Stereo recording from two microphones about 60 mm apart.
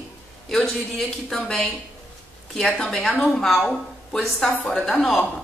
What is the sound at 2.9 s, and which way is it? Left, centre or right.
A woman's voice, centre.